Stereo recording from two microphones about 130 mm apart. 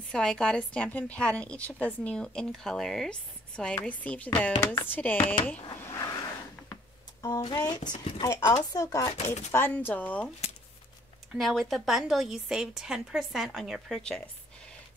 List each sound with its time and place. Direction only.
0.1 s a woman's voice: 5° left (ahead or behind)
6.7 s a sound: 25° left (ahead or behind)
7.5 s speech: 30° left (ahead or behind)
9.1 s speech: 60° left (ahead or behind)
9.5 s a woman's voice: 15° left (ahead or behind)
11.3 s a woman's voice: centre (ahead or behind)